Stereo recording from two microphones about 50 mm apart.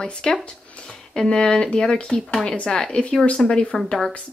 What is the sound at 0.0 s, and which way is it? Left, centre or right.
Speech, centre.